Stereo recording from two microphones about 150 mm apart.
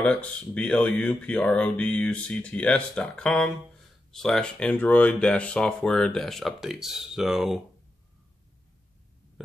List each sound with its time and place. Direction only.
0.0 s speech: 5° left (ahead or behind)